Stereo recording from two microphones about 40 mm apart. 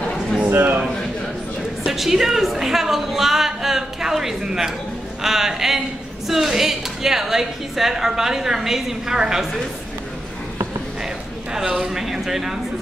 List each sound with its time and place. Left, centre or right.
0.5 s a man's voice: right
1.9 s a woman's voice: centre
11.5 s a woman's voice: centre